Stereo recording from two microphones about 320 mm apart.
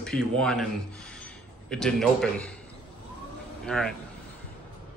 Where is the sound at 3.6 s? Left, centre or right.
Centre.